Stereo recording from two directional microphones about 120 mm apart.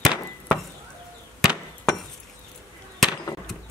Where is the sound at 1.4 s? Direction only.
Centre (ahead or behind).